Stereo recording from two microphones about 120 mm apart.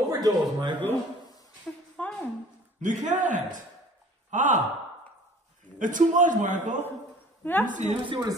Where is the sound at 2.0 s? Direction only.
10° left (ahead or behind).